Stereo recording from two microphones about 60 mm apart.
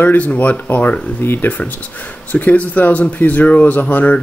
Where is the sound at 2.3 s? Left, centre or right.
Left.